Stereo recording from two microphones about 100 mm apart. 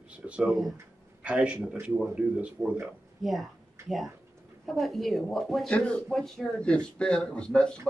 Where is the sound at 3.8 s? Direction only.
25° right (ahead or behind).